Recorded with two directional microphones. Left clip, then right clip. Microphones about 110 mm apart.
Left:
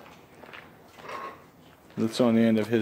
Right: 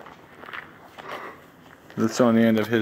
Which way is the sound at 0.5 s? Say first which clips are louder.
Right 9 dB; 40° right (ahead or behind).